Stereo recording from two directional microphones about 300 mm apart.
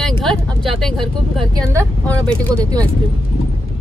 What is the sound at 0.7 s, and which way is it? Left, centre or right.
Speech, centre.